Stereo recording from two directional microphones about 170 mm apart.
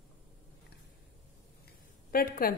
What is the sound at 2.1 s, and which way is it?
Speech, 60° left (ahead or behind).